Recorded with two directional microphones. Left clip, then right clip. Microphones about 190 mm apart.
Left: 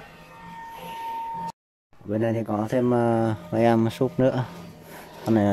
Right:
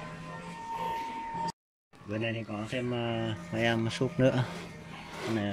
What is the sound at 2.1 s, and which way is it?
Speech, 20° left (ahead or behind).